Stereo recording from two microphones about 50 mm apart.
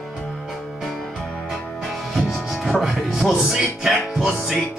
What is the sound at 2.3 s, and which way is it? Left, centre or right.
Speech, centre.